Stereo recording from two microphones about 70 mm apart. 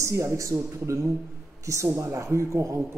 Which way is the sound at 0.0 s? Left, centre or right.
Right.